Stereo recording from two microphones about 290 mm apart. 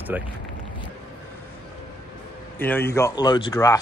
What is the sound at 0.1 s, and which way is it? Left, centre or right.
Speech, centre.